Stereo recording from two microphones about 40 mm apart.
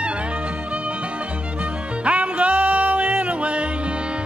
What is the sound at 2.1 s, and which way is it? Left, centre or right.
Music, right.